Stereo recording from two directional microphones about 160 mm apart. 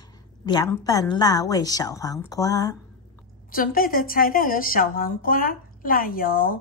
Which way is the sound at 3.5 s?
60° left (ahead or behind).